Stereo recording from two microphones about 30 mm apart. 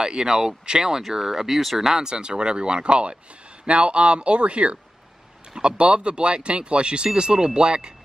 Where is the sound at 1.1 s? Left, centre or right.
Centre.